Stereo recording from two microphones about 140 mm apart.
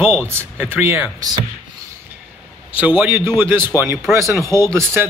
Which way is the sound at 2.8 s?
10° right (ahead or behind).